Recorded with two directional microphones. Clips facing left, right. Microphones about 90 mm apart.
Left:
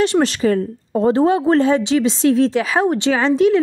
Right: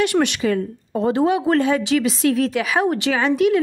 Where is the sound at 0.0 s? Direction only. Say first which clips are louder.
Left 3 dB; 30° left (ahead or behind).